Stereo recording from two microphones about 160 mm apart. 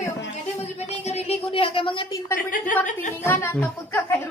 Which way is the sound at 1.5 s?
35° left (ahead or behind).